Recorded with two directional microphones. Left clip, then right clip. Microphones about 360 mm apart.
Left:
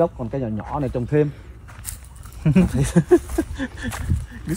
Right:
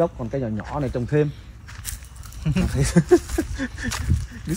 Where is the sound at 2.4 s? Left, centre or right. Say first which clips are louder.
Left 4 dB; centre.